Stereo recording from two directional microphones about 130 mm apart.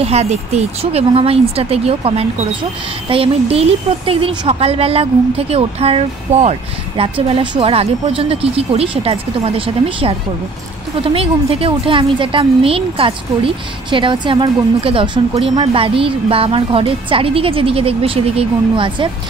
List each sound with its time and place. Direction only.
0.0 s a woman's voice: 55° right (ahead or behind)